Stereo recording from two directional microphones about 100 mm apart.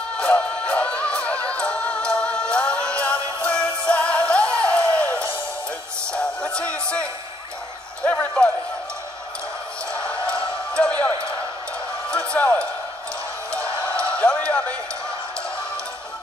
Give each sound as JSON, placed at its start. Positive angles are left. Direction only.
{"t": 0.2, "sound": "music", "side_deg": 10}
{"t": 8.0, "sound": "clip-clop", "side_deg": 15}
{"t": 10.0, "sound": "music", "side_deg": -30}
{"t": 10.7, "sound": "basketball bounce", "side_deg": 15}
{"t": 12.1, "sound": "music", "side_deg": 10}
{"t": 13.6, "sound": "a sound", "side_deg": -30}
{"t": 14.1, "sound": "a sound", "side_deg": 10}